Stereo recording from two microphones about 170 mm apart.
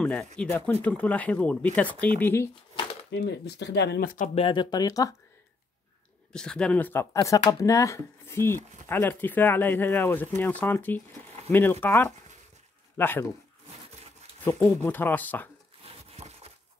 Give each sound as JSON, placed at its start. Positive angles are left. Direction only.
{"t": 0.0, "sound": "speech", "side_deg": 5}
{"t": 2.7, "sound": "a sound", "side_deg": 30}
{"t": 3.1, "sound": "speech", "side_deg": 85}
{"t": 4.4, "sound": "speech", "side_deg": 30}
{"t": 6.3, "sound": "speech", "side_deg": 5}
{"t": 14.4, "sound": "speech", "side_deg": 10}
{"t": 16.2, "sound": "a sound", "side_deg": -40}